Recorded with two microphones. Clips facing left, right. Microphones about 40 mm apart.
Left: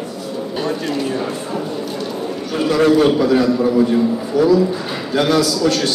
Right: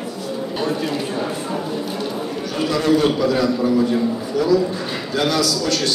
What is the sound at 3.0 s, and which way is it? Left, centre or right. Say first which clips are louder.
Speech: left 4 dB; left.